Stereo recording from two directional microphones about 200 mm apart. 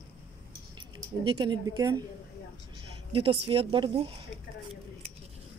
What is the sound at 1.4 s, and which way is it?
Speech, 25° right (ahead or behind).